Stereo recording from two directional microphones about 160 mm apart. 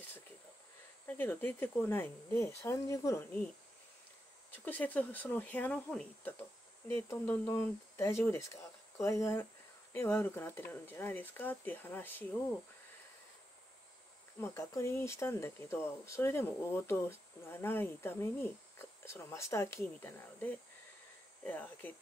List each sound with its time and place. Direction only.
1.0 s speech: 15° left (ahead or behind)
4.6 s speech: 10° left (ahead or behind)
14.4 s speech: 15° left (ahead or behind)